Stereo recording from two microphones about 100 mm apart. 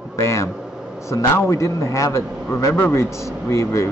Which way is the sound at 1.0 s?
30° left (ahead or behind).